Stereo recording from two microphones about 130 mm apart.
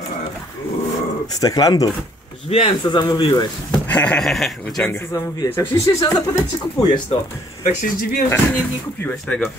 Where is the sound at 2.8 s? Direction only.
30° left (ahead or behind).